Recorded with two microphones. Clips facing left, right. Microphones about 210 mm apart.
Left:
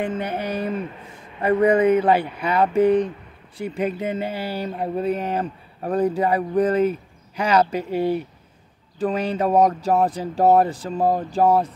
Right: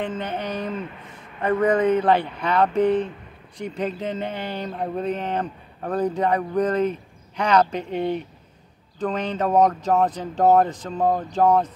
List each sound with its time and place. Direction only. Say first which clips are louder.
0.0 s speech: left 2 dB; 10° left (ahead or behind)